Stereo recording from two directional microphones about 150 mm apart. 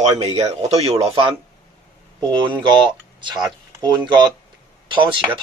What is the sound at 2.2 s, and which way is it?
Speech, 30° right (ahead or behind).